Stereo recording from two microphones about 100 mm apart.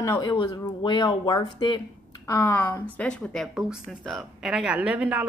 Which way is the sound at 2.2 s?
25° left (ahead or behind).